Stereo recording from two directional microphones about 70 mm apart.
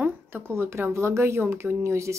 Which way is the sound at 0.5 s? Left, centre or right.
Right.